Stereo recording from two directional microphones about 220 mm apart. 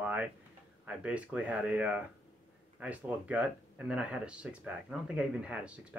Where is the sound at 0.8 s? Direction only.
5° right (ahead or behind).